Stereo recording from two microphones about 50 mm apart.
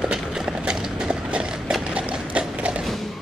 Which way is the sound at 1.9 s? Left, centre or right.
Right.